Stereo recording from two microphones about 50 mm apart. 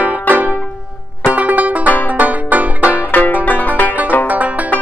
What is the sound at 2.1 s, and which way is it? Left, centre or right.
Banjo, right.